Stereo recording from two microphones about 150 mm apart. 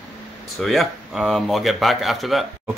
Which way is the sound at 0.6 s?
Centre (ahead or behind).